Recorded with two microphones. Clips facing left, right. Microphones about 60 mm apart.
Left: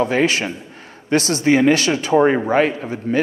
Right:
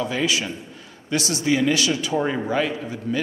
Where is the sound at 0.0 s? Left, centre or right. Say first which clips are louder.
Left 6 dB; left.